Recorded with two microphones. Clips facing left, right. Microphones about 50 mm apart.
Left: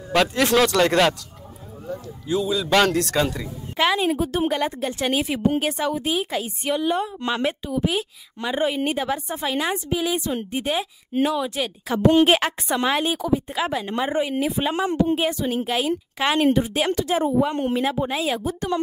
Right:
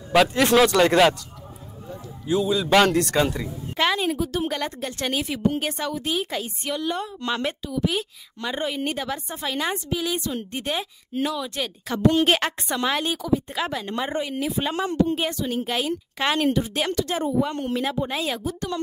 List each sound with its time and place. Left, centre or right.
0.1 s speech: centre
2.2 s speech: centre
4.2 s a woman's voice: left
4.5 s a woman's voice: centre
11.1 s a woman's voice: left
11.5 s a woman's voice: centre
12.0 s a woman's voice: left
12.3 s a woman's voice: centre
16.3 s a woman's voice: centre
18.1 s speech: centre
18.4 s a woman's voice: left